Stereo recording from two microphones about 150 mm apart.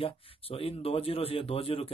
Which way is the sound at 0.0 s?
40° left (ahead or behind).